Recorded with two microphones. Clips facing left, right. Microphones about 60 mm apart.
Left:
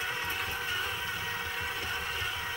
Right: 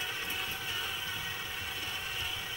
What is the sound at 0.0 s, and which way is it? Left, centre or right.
Vehicle, left.